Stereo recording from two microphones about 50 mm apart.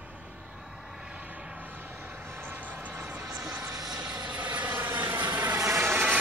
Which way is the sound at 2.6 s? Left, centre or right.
Right.